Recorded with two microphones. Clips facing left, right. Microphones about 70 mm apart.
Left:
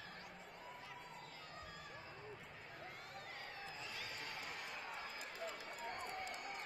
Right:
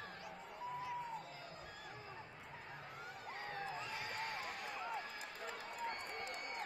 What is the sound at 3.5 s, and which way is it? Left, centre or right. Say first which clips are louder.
Run: right 6 dB; right.